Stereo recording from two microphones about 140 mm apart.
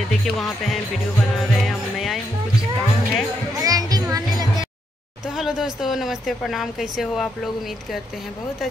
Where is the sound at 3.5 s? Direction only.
25° right (ahead or behind).